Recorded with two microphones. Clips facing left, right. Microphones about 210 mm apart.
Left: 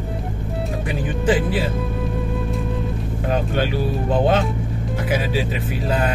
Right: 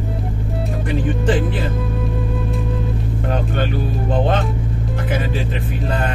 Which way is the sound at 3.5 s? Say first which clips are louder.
Even; 5° left (ahead or behind).